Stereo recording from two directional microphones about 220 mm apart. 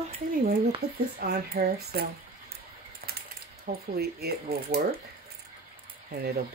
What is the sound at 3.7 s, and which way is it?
Speech, 45° right (ahead or behind).